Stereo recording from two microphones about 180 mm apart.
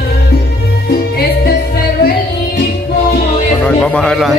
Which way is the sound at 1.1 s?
60° left (ahead or behind).